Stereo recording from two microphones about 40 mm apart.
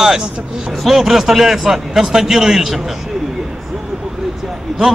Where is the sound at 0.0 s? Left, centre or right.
Centre.